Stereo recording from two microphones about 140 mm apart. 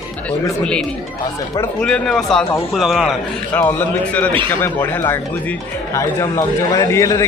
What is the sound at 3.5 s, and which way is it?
A man's voice, 15° left (ahead or behind).